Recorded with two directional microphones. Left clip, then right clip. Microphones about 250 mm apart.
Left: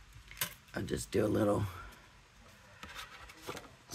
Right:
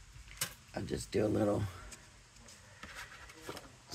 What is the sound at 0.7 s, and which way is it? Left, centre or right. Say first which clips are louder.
Speech: left 2 dB; left.